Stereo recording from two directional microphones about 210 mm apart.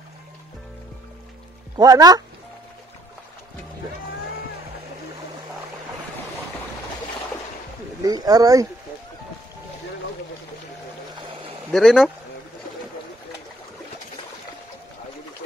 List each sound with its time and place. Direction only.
1.8 s speech: 20° right (ahead or behind)
8.0 s speech: 15° right (ahead or behind)
11.7 s speech: centre (ahead or behind)